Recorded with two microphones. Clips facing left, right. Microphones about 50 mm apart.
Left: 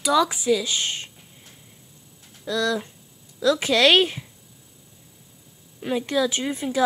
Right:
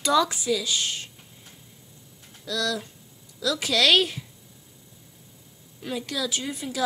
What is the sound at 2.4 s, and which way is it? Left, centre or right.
Speech, left.